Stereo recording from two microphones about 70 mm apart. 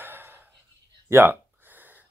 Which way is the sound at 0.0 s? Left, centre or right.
Right.